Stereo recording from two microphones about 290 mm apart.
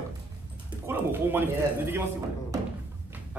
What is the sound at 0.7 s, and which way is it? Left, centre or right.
Speech, centre.